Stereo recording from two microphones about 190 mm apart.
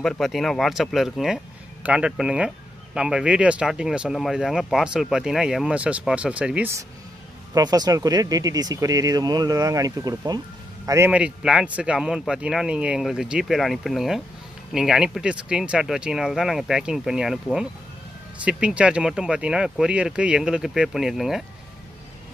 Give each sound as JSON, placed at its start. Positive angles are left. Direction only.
{"t": 0.0, "sound": "speech", "side_deg": 0}
{"t": 7.5, "sound": "speech", "side_deg": -20}
{"t": 10.9, "sound": "speech", "side_deg": -10}